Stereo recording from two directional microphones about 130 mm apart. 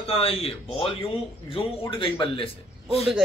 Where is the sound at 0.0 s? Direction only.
50° left (ahead or behind).